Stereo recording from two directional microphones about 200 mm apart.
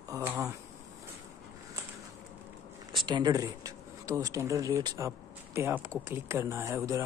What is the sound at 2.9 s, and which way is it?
Speech, 20° right (ahead or behind).